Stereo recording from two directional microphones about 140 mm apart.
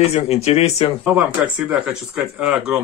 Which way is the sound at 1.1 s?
10° right (ahead or behind).